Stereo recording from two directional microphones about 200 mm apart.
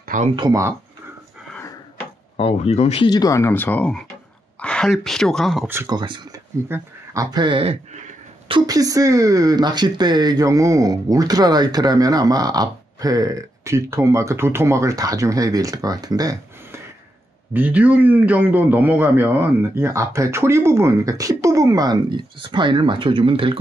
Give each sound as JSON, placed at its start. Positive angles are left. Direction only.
{"t": 0.0, "sound": "a sound", "side_deg": -40}
{"t": 0.4, "sound": "speech", "side_deg": -15}
{"t": 1.5, "sound": "drawer open or close", "side_deg": 10}
{"t": 2.3, "sound": "speech", "side_deg": 30}
{"t": 5.7, "sound": "speech", "side_deg": -15}
{"t": 17.6, "sound": "speech", "side_deg": -10}